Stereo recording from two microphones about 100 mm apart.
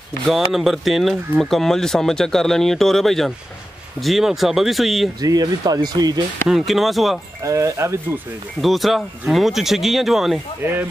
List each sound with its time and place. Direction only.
0.3 s speech: centre (ahead or behind)
5.2 s speech: 40° right (ahead or behind)
6.5 s speech: centre (ahead or behind)
7.4 s speech: 30° right (ahead or behind)
8.5 s speech: centre (ahead or behind)
10.6 s speech: 20° right (ahead or behind)